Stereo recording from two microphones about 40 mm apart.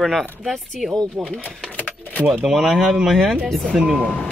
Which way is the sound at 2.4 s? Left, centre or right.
Centre.